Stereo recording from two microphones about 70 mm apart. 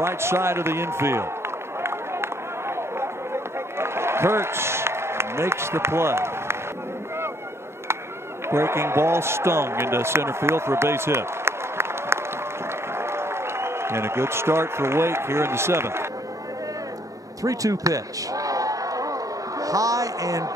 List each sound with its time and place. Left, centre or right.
0.0 s speech: right
1.8 s run: right
3.7 s a man's voice: right
8.5 s a man's voice: right
17.4 s a sound: right
19.6 s music: right